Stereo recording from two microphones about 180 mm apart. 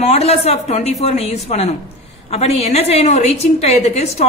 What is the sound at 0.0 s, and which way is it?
A woman's voice, 35° left (ahead or behind).